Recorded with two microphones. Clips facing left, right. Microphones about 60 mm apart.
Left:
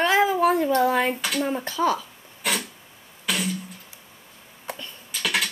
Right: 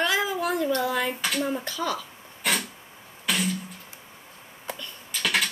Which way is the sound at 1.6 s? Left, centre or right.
Left.